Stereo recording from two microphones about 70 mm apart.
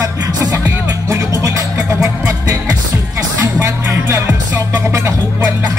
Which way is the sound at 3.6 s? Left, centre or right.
Right.